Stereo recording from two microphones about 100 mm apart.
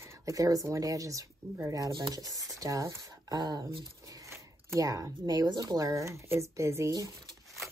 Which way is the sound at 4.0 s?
35° right (ahead or behind).